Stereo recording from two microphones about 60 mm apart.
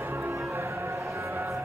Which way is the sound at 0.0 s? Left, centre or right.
Right.